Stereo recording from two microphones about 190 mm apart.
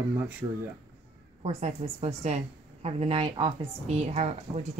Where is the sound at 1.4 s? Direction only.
35° right (ahead or behind).